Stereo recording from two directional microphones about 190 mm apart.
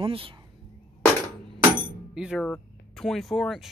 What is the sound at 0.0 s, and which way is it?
Speech, 30° right (ahead or behind).